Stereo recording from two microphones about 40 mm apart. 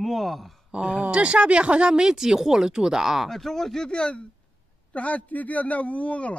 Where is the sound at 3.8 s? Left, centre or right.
Left.